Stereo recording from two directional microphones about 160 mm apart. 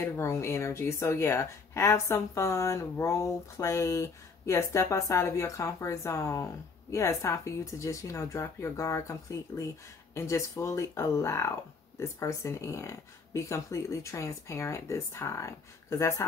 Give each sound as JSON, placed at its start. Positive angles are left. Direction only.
{"t": 0.0, "sound": "speech", "side_deg": 15}